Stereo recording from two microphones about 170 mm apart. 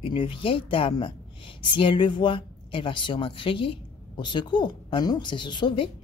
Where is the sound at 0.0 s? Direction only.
30° left (ahead or behind).